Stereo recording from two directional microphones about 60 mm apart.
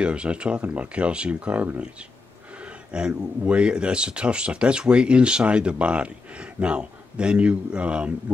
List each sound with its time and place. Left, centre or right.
0.0 s speech: centre